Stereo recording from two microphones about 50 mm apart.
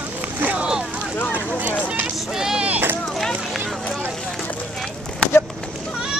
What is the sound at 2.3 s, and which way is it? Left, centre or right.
Vehicle, centre.